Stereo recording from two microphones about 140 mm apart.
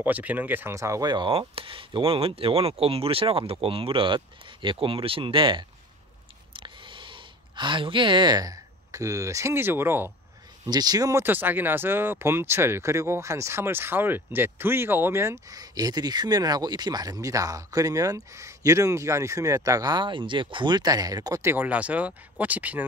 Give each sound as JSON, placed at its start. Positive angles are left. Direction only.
{"t": 0.0, "sound": "speech", "side_deg": -10}
{"t": 10.6, "sound": "speech", "side_deg": -30}